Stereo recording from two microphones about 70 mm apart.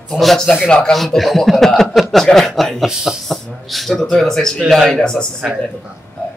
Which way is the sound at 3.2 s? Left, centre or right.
Centre.